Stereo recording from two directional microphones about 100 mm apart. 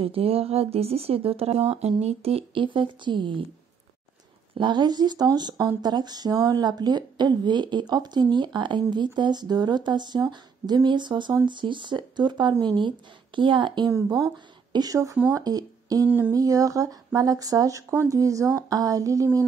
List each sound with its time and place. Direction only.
0.0 s speech: 70° right (ahead or behind); by 3.4 s 55° right (ahead or behind)
4.6 s a woman's voice: 50° right (ahead or behind)
13.8 s a woman's voice: 35° right (ahead or behind)
16.1 s a sound: 25° right (ahead or behind)
16.3 s speech: 35° right (ahead or behind)